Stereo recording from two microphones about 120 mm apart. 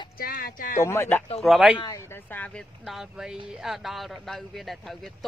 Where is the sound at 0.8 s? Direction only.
20° left (ahead or behind).